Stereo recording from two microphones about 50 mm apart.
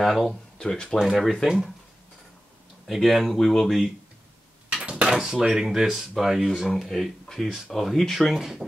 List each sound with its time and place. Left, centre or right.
0.0 s speech: centre
0.6 s speech: centre
1.1 s speech: centre
2.9 s speech: centre
4.8 s drawer open or close: right
5.1 s speech: centre
7.4 s speech: centre
7.7 s speech: centre